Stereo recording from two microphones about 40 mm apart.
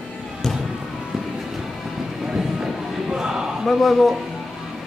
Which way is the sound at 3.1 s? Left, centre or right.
Centre.